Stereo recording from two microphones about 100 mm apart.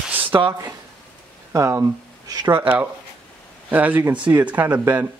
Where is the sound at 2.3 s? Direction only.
45° right (ahead or behind).